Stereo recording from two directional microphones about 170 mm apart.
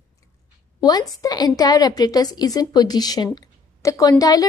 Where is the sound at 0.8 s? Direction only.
25° left (ahead or behind).